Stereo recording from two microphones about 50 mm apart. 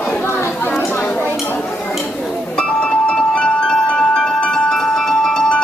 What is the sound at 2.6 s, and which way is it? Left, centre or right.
Music, left.